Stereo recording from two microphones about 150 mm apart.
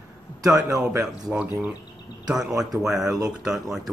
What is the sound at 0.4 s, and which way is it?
Speech, 20° right (ahead or behind).